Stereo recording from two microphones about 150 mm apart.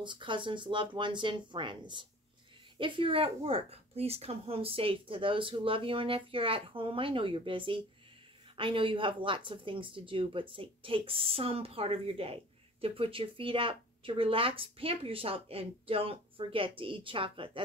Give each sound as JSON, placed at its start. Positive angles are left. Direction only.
{"t": 0.0, "sound": "speech", "side_deg": -35}